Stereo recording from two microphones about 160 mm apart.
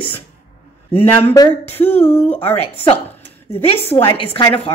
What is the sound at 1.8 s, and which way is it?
Speech, 10° left (ahead or behind).